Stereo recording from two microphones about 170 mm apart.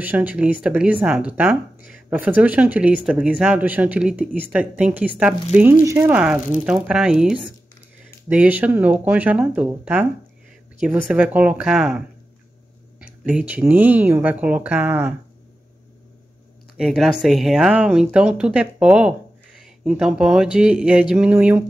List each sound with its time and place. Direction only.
0.0 s speech: 10° right (ahead or behind)
1.8 s a sound: 60° left (ahead or behind)
2.0 s speech: 10° right (ahead or behind)
13.0 s speech: 5° right (ahead or behind)
16.7 s speech: centre (ahead or behind)